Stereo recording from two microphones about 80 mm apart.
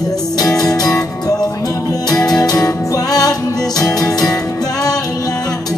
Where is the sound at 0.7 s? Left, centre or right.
Left.